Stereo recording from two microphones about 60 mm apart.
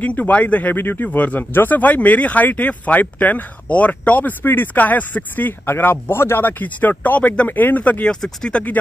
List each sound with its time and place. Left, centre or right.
0.0 s speech: left
8.1 s speech: centre